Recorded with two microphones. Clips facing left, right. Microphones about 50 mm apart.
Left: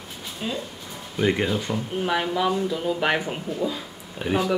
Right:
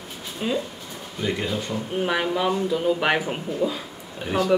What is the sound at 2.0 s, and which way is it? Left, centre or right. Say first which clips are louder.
A man's voice: even; centre.